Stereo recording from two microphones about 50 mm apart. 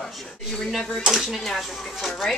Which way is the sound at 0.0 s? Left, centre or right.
Centre.